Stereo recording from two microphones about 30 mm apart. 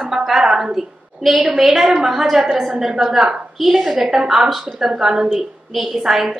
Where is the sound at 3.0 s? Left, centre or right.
Right.